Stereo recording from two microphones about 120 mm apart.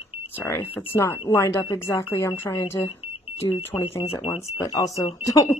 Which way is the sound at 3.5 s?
55° left (ahead or behind).